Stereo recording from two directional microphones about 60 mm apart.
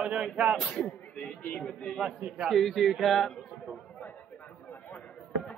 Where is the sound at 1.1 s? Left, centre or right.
Centre.